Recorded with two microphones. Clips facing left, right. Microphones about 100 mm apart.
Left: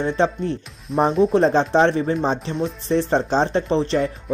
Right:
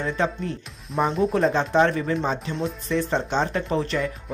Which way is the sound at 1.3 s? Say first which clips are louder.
Left 4 dB; 30° left (ahead or behind).